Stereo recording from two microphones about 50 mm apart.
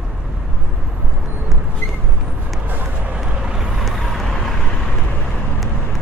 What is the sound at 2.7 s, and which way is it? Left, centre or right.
Music, right.